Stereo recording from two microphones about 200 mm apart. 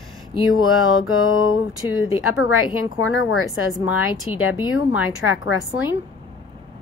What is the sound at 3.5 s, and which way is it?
Speech, 5° right (ahead or behind).